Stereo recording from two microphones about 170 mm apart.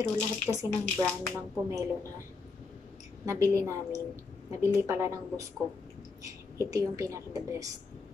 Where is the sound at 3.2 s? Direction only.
20° right (ahead or behind).